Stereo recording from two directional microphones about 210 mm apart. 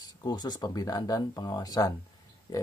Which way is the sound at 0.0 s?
20° left (ahead or behind).